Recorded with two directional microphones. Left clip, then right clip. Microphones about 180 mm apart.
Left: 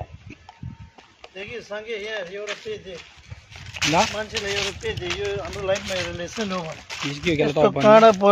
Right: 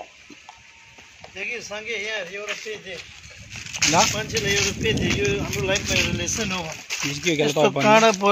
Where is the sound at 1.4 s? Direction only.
50° left (ahead or behind).